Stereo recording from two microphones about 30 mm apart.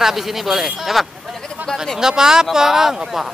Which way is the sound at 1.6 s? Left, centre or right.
Right.